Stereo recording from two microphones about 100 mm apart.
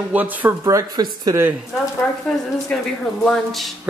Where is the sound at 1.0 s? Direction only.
40° right (ahead or behind).